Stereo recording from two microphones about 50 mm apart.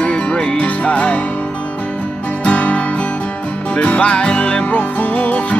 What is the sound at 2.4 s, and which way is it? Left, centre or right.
Music, left.